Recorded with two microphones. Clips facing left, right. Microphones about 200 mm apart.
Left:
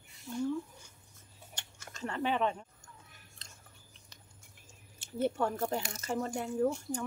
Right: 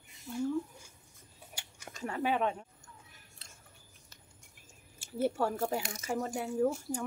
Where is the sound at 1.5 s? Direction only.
10° right (ahead or behind).